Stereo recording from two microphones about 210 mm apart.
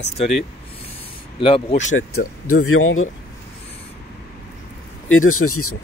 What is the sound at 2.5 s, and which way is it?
Speech, 80° left.